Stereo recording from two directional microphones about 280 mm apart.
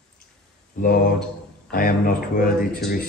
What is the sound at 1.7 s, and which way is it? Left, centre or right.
Speech, left.